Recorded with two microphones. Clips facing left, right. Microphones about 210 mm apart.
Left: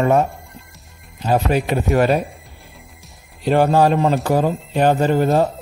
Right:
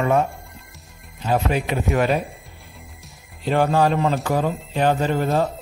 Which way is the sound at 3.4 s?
40° left (ahead or behind).